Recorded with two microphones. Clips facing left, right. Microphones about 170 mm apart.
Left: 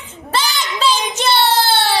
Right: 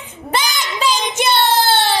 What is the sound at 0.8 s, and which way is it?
Child singing, 15° right (ahead or behind).